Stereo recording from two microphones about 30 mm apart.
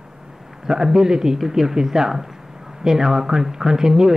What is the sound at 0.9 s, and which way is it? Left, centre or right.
Speech, centre.